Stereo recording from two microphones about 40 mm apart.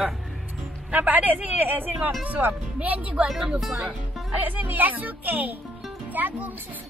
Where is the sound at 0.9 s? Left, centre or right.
Right.